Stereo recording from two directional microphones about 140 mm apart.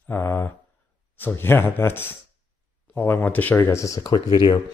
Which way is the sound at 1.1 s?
15° left (ahead or behind).